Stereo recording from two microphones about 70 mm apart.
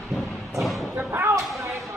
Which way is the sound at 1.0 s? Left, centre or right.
Right.